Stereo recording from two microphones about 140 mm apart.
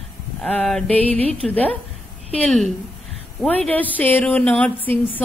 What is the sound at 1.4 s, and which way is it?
Speech, 10° left (ahead or behind).